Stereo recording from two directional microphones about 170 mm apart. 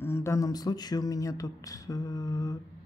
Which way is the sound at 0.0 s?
15° left (ahead or behind).